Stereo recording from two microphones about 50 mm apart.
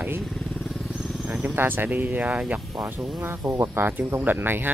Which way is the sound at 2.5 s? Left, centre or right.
Centre.